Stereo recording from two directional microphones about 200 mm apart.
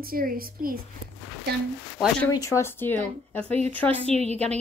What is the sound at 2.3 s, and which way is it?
Speech, 15° left (ahead or behind).